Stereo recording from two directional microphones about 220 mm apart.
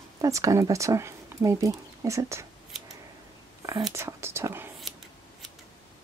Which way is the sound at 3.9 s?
10° right (ahead or behind).